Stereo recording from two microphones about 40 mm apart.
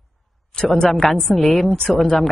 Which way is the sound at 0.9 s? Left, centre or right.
Centre.